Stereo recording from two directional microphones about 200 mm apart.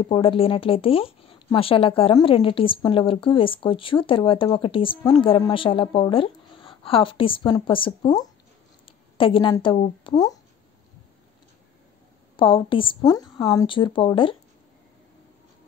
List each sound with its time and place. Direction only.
0.1 s speech: 25° left (ahead or behind)
12.4 s speech: 25° left (ahead or behind)